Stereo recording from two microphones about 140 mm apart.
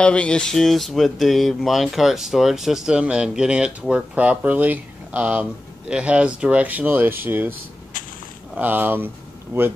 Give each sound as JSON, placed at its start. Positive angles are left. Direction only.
{"t": 0.0, "sound": "speech", "side_deg": 10}
{"t": 8.5, "sound": "speech", "side_deg": -15}